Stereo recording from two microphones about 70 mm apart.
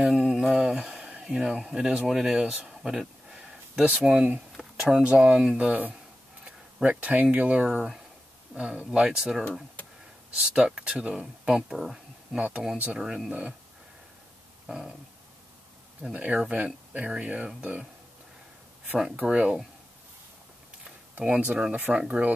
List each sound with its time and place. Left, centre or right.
0.0 s mantra: centre
1.2 s speech: centre
2.8 s a sound: centre
4.5 s a sound: centre
5.1 s speech: centre
12.7 s speech: centre
16.0 s speech: centre
19.2 s speech: centre
21.1 s speech: centre